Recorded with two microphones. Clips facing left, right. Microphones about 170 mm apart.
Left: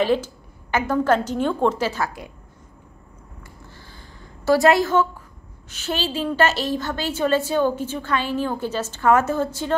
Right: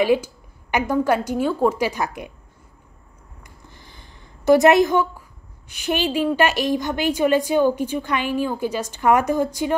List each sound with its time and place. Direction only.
0.0 s a woman's voice: 10° right (ahead or behind)
3.6 s a sound: 20° right (ahead or behind)
5.7 s a woman's voice: 15° right (ahead or behind)